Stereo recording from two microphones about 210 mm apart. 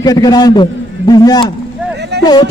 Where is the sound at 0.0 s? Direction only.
20° left (ahead or behind).